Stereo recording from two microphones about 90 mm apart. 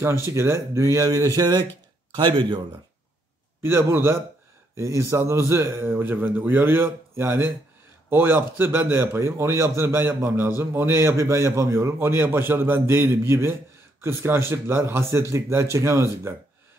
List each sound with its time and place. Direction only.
0.0 s speech: 30° right (ahead or behind)
2.1 s speech: 65° right (ahead or behind)
3.6 s a man's voice: 25° right (ahead or behind)